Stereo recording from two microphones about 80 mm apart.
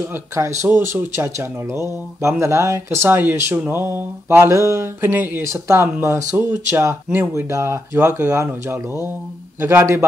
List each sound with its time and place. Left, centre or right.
0.1 s mantra: right